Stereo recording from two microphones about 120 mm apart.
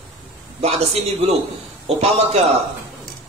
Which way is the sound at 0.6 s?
60° right (ahead or behind).